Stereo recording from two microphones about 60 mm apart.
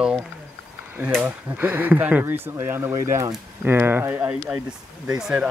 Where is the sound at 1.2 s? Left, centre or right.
Right.